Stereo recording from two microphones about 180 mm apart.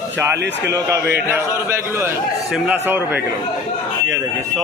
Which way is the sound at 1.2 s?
15° right (ahead or behind).